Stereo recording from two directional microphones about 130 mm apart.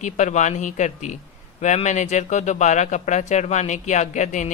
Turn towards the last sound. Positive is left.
turn(degrees=70)  # may be behind; listen again after turning